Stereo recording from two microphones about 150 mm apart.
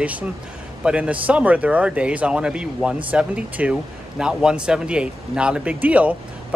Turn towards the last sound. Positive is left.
turn(degrees=-10)  # may be behind; listen again after turning